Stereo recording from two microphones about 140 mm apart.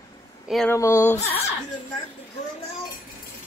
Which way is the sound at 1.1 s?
45° left (ahead or behind).